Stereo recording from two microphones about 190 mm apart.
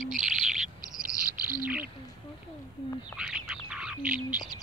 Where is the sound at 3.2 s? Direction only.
5° right (ahead or behind).